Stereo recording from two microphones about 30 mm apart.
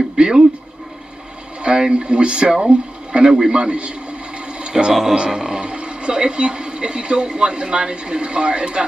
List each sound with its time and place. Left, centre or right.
0.2 s speech: right
1.6 s a sound: right
2.0 s a man's voice: right
4.6 s toilet flush: right
5.1 s a sound: right
7.2 s speech: right